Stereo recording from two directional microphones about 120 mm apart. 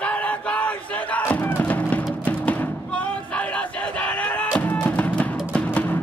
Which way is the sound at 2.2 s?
15° left (ahead or behind).